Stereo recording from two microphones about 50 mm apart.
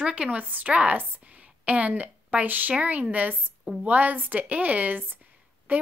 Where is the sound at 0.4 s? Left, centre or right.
Right.